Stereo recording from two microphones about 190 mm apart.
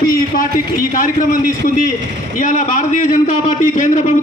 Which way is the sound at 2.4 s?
40° left (ahead or behind).